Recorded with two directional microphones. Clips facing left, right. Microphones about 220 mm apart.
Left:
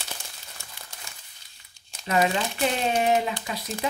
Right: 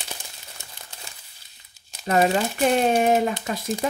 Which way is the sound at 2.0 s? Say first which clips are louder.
Right 4 dB; 50° right (ahead or behind).